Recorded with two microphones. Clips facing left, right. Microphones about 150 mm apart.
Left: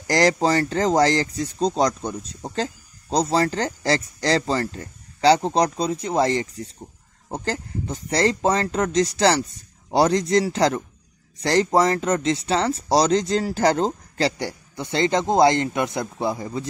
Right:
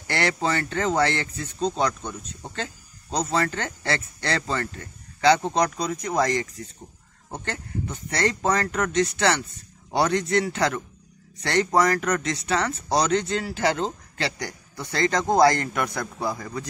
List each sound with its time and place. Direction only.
0.0 s speech: 35° left (ahead or behind)
14.8 s a man's voice: 25° left (ahead or behind)